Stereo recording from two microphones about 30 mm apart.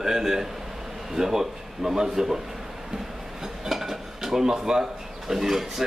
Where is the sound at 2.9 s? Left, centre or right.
Centre.